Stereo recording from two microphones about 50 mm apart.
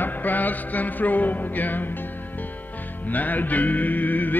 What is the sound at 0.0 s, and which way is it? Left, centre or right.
Music, left.